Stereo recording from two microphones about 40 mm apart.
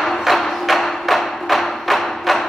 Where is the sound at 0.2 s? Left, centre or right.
Centre.